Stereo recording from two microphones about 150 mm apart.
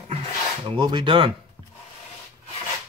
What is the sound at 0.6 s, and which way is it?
Speech, 30° right (ahead or behind).